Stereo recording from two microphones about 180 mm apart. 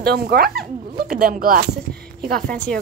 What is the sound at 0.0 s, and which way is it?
Speech, 60° right (ahead or behind).